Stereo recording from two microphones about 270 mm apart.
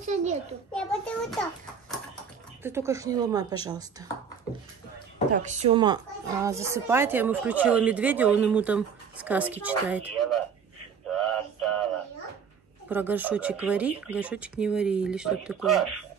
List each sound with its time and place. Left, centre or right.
0.0 s a sound: right
0.7 s speech: centre
2.6 s speech: centre
5.3 s speech: right; by 10.4 s centre
11.1 s synthetic singing: centre
12.8 s speech: centre